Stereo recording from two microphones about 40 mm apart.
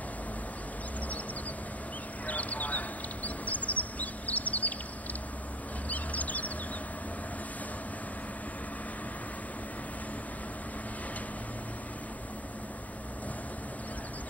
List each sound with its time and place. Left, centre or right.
2.2 s bird: left
3.3 s chirp: left
5.9 s bird: left